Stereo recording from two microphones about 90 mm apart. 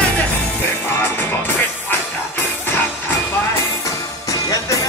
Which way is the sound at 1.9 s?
20° left (ahead or behind).